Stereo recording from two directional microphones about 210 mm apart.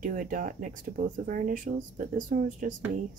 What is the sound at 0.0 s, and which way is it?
Speech, 40° right (ahead or behind).